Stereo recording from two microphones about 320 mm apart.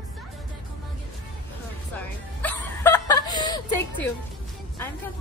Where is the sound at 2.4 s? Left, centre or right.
Centre.